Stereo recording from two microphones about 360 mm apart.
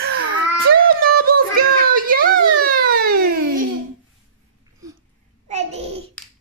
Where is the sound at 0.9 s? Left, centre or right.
Right.